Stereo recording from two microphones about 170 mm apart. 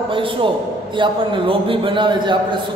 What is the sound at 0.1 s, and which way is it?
A man's voice, 30° right (ahead or behind).